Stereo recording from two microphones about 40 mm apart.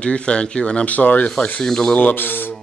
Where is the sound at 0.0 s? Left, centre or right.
Left.